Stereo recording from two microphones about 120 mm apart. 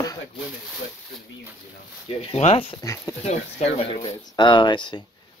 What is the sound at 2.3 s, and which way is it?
Speech, 60° left (ahead or behind).